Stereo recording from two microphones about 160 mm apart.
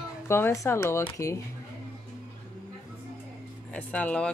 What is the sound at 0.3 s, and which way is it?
Speech, 15° left (ahead or behind).